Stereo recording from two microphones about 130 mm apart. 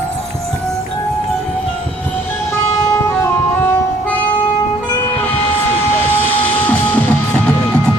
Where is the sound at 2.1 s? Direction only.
20° left (ahead or behind).